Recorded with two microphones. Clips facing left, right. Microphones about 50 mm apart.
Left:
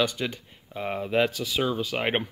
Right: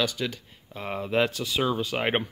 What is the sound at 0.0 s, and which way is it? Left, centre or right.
Speech, centre.